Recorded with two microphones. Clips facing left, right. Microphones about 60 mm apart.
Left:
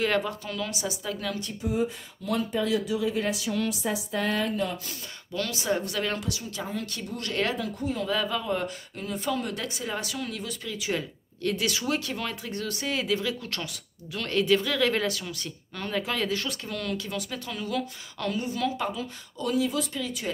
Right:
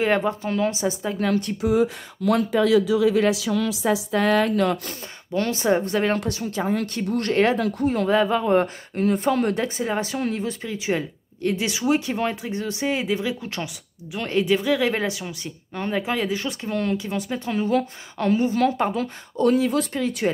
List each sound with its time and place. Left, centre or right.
0.0 s speech: right
1.3 s speech: right
1.6 s speech: right
5.3 s speech: right
6.1 s a woman's voice: right
8.1 s speech: right
9.6 s speech: right